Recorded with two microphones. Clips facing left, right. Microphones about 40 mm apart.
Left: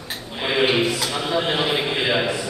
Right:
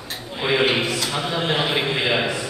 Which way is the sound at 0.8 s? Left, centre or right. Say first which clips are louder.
Left 1 dB; centre.